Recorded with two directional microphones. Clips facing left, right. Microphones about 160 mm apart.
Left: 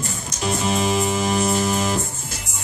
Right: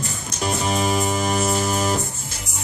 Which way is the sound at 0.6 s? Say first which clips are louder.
Left 1 dB; 45° right (ahead or behind).